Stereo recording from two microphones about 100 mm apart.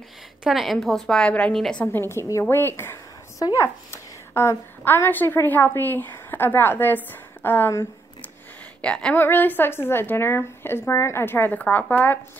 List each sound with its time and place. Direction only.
0.4 s a woman's voice: centre (ahead or behind)
1.9 s a woman's voice: 25° left (ahead or behind)
2.5 s a sound: 25° left (ahead or behind)
3.5 s a woman's voice: 30° left (ahead or behind)
8.8 s a woman's voice: 10° left (ahead or behind)